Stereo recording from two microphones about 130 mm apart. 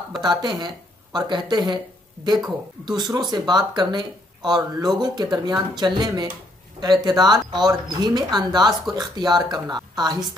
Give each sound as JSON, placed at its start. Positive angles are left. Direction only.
{"t": 0.2, "sound": "speech", "side_deg": -35}
{"t": 2.8, "sound": "speech", "side_deg": -35}